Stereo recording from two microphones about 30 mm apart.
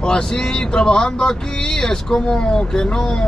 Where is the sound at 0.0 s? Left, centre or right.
Left.